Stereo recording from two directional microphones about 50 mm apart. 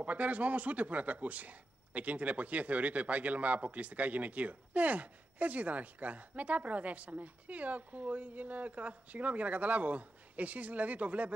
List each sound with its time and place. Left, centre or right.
0.0 s speech: right